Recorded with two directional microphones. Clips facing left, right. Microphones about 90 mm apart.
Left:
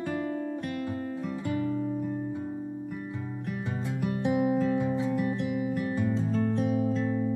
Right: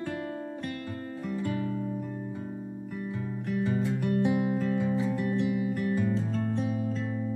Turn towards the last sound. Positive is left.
turn(degrees=5)  # may be behind; listen again after turning